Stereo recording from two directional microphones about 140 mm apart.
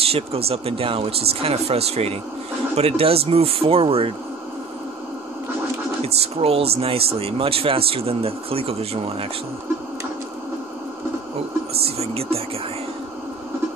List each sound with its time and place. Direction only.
0.1 s speech: 45° right (ahead or behind)
6.0 s speech: 45° right (ahead or behind)
11.8 s speech: 45° right (ahead or behind)